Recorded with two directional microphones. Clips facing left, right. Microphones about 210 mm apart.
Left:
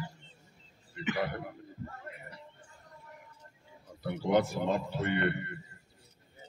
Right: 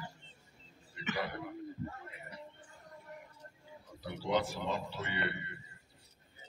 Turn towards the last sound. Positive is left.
turn(degrees=55)  # may be behind; listen again after turning